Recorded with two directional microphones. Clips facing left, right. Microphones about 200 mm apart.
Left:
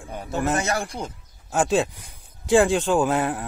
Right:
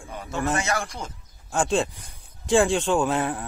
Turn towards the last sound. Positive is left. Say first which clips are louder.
# left 2 dB
turn(degrees=5)  # may be behind; listen again after turning